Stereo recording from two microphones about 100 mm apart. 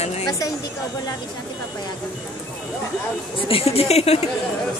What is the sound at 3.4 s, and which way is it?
Speech, 75° left (ahead or behind).